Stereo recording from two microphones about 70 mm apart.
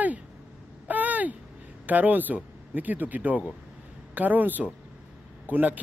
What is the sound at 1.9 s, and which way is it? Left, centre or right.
A man's voice, right.